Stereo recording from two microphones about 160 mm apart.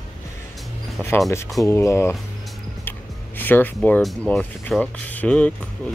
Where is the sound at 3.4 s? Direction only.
10° left (ahead or behind).